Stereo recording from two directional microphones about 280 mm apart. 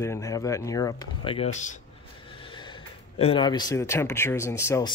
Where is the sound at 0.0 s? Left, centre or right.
Centre.